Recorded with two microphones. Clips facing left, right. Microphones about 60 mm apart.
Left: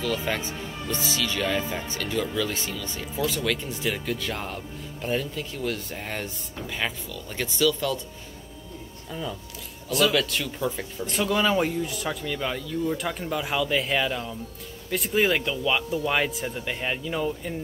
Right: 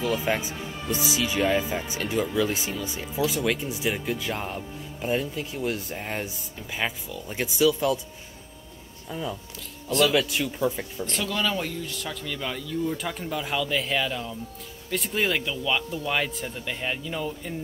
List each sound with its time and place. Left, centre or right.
0.0 s speech: centre
9.1 s speech: centre
11.1 s speech: centre